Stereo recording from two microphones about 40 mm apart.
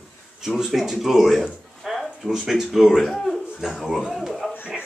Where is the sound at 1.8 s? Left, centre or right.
Centre.